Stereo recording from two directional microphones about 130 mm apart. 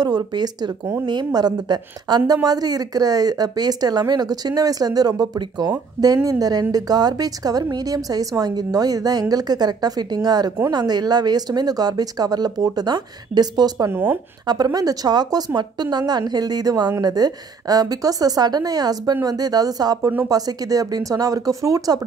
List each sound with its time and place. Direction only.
0.0 s a woman's voice: 35° right (ahead or behind)
13.9 s speech: 15° right (ahead or behind)
14.4 s a woman's voice: 30° right (ahead or behind)